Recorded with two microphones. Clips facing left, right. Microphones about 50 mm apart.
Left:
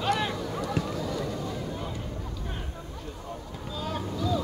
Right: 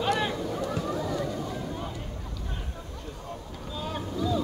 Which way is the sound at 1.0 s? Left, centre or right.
Right.